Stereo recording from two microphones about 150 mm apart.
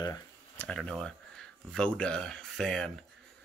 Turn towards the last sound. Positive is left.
turn(degrees=5)  # may be behind; listen again after turning